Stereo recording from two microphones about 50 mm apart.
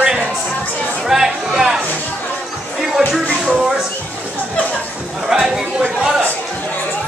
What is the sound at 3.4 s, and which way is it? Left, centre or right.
Speech, centre.